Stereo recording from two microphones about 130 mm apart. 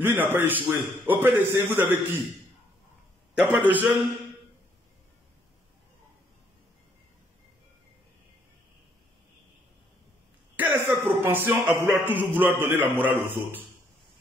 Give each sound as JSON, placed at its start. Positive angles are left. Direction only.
{"t": 0.0, "sound": "a man's voice", "side_deg": -15}
{"t": 3.5, "sound": "a man's voice", "side_deg": -15}
{"t": 10.5, "sound": "a sound", "side_deg": -15}
{"t": 12.6, "sound": "a man's voice", "side_deg": -15}